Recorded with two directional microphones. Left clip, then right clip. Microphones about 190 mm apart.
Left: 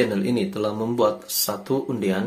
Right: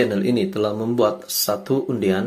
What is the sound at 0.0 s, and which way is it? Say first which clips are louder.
Speech: right 3 dB; 15° right (ahead or behind).